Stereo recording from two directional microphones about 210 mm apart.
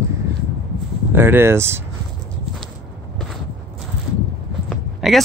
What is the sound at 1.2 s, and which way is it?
Speech, 10° right (ahead or behind).